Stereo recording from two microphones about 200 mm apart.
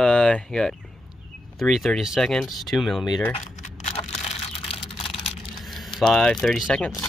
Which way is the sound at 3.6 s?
35° left (ahead or behind).